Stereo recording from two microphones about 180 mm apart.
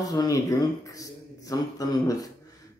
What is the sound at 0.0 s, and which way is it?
Speech, 20° left (ahead or behind).